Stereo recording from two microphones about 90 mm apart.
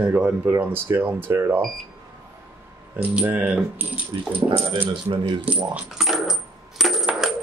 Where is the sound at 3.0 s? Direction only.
15° right (ahead or behind).